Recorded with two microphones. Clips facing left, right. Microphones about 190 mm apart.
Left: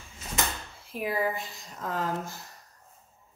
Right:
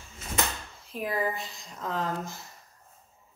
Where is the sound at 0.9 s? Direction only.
10° left (ahead or behind).